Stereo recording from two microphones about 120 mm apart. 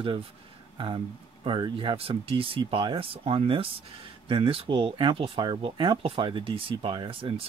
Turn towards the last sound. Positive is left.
turn(degrees=-45)  # may be behind; listen again after turning